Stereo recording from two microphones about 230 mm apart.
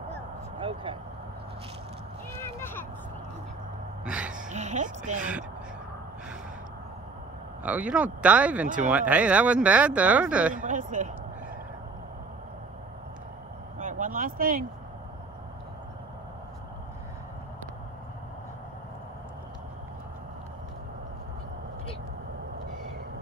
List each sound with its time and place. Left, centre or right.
0.6 s speech: right
4.0 s a sound: centre
4.4 s a sound: right
7.6 s speech: centre
8.6 s speech: right
8.9 s speech: centre
10.5 s speech: right
13.7 s speech: right